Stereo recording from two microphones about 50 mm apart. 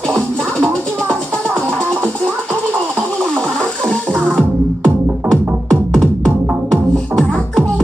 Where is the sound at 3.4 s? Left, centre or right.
Centre.